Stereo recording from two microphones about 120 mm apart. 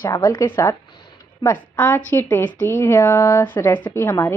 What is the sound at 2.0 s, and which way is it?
A woman's voice, 20° left (ahead or behind).